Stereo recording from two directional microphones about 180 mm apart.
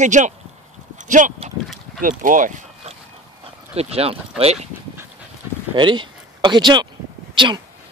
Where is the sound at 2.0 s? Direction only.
45° right (ahead or behind).